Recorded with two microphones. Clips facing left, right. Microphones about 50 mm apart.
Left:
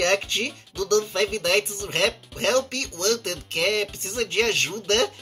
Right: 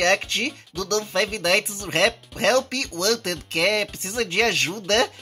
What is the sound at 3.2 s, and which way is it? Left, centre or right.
Speech, right.